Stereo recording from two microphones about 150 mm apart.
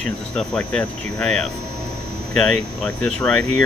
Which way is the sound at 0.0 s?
5° left (ahead or behind).